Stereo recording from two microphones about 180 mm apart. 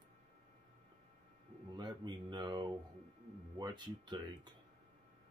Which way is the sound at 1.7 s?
25° right (ahead or behind).